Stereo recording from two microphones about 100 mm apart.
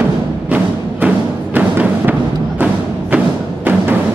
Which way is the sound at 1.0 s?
15° right (ahead or behind).